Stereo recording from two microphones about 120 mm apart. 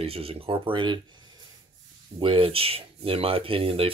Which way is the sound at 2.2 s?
45° right (ahead or behind).